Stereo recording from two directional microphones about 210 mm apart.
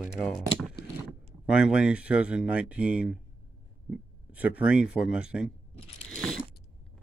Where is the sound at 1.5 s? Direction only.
5° right (ahead or behind).